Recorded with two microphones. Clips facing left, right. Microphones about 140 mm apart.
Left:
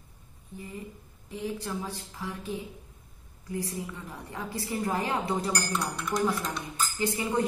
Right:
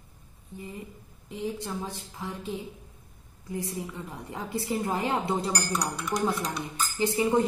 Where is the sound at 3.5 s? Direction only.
25° right (ahead or behind).